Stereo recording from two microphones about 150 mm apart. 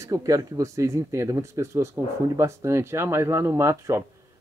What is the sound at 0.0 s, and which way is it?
Speech, 20° right (ahead or behind).